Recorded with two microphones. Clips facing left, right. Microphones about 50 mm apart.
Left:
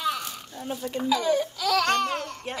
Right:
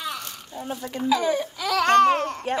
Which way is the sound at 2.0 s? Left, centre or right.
Right.